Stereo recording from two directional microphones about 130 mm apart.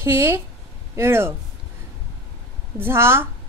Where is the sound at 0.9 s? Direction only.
20° right (ahead or behind).